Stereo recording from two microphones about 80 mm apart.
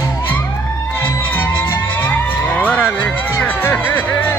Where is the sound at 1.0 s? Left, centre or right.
Left.